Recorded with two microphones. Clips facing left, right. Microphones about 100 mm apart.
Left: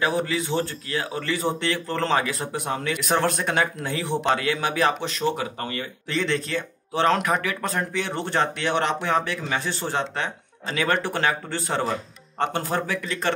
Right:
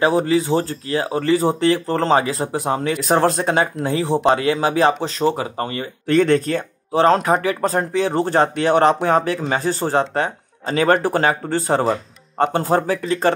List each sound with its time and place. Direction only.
0.0 s speech: 35° right (ahead or behind)
6.0 s speech: 50° right (ahead or behind)
6.9 s speech: 35° right (ahead or behind)